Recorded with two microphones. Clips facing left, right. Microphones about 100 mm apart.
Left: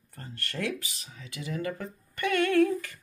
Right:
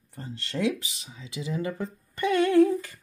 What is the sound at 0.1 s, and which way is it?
Speech, 20° right (ahead or behind).